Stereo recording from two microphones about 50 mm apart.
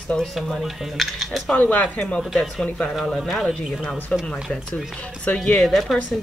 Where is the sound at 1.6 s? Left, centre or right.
Left.